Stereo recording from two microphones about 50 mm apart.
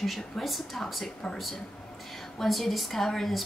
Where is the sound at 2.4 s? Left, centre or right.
Centre.